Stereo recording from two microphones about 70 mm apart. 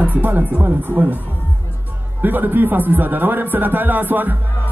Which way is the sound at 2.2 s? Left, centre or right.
Right.